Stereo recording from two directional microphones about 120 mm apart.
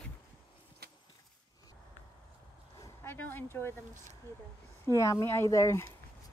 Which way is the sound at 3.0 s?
15° left (ahead or behind).